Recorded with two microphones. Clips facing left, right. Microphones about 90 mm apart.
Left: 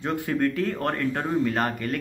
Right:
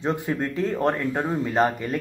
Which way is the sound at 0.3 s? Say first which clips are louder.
Left 1 dB; 15° right (ahead or behind).